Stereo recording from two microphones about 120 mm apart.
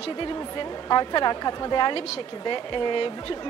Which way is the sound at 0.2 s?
40° left (ahead or behind).